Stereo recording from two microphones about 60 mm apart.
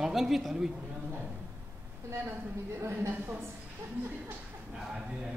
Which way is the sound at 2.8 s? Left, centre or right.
Right.